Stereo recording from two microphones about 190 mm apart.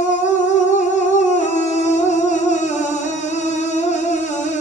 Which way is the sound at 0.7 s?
40° left (ahead or behind).